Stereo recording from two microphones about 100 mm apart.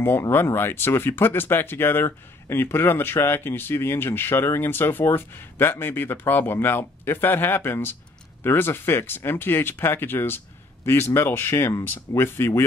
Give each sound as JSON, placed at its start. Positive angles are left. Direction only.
{"t": 0.0, "sound": "speech", "side_deg": 20}